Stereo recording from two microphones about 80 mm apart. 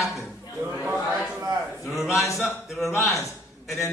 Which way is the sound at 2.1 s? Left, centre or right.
Left.